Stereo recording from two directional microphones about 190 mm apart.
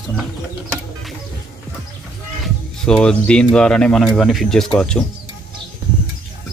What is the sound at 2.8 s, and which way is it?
Speech, 5° left (ahead or behind).